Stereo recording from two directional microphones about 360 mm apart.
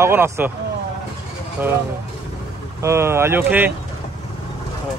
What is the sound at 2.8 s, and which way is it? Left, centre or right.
Speech, centre.